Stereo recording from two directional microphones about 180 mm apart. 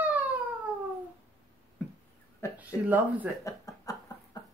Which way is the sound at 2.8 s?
10° right (ahead or behind).